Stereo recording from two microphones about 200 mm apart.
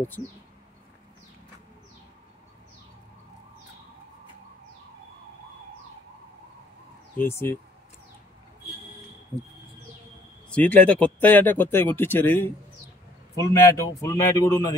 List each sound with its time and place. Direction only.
7.2 s speech: 10° left (ahead or behind)
10.5 s speech: 5° left (ahead or behind)
13.5 s speech: 15° left (ahead or behind)